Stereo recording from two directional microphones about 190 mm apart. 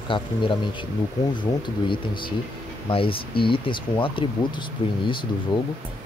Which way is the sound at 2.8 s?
30° left (ahead or behind).